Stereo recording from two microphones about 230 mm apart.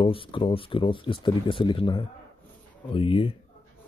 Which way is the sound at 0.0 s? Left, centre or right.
Left.